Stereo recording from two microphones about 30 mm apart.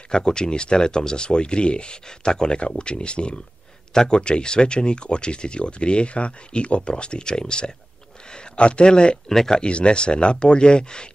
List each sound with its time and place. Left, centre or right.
0.1 s speech: left
3.9 s speech: left
9.3 s speech: centre
9.6 s speech: left